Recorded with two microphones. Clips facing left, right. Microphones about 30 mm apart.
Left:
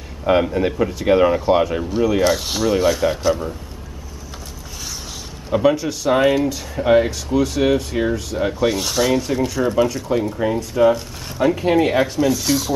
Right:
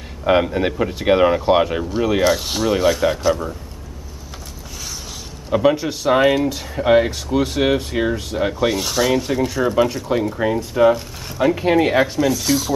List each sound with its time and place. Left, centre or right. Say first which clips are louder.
0.2 s speech: even; centre
2.2 s speech: even; centre
5.5 s speech: even; centre